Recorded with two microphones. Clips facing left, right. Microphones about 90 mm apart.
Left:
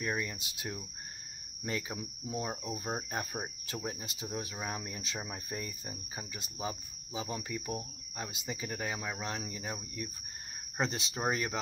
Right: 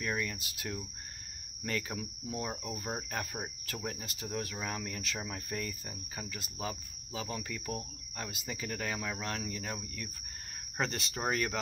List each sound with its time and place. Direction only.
0.0 s speech: 20° left (ahead or behind)